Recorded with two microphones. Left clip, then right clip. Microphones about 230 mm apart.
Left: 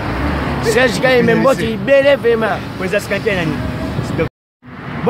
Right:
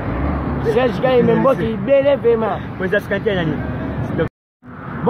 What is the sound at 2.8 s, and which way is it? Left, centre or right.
Speech, centre.